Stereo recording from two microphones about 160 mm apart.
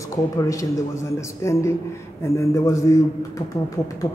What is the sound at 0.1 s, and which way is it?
A man's voice, 20° left (ahead or behind).